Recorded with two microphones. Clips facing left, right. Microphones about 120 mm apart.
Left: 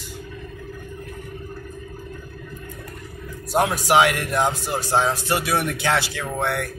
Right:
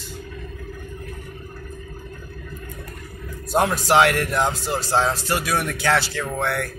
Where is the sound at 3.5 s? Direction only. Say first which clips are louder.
Even; 10° left (ahead or behind).